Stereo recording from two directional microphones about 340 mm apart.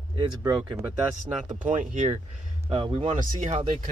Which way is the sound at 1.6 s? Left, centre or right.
Right.